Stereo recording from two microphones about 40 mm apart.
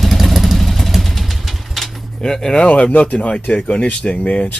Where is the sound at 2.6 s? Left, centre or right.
Left.